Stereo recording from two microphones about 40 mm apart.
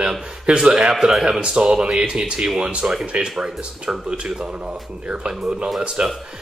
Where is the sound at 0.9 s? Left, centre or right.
Centre.